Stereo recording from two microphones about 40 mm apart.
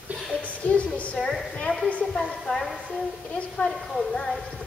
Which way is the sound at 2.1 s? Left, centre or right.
Centre.